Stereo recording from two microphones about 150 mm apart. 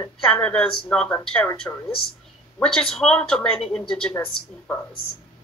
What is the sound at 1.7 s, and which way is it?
Speech, 15° left (ahead or behind).